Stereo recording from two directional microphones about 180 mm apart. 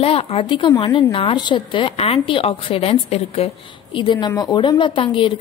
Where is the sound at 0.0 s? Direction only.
35° left (ahead or behind).